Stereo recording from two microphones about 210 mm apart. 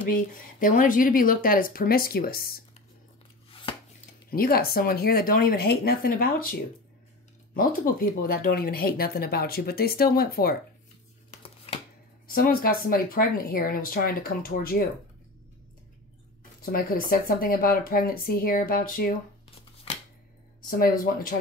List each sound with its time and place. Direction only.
0.1 s speech: 40° left (ahead or behind)
3.7 s chopping: 25° left (ahead or behind)
4.3 s speech: 45° left (ahead or behind)
7.5 s speech: 45° left (ahead or behind)
12.3 s speech: 45° left (ahead or behind)
16.7 s speech: 45° left (ahead or behind)
20.6 s speech: 45° left (ahead or behind)